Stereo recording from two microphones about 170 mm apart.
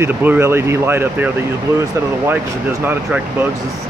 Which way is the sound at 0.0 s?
10° right (ahead or behind).